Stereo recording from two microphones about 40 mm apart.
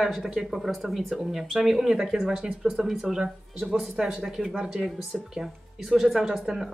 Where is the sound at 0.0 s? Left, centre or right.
Centre.